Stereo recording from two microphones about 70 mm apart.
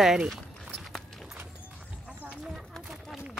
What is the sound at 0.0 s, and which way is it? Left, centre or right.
Speech, centre.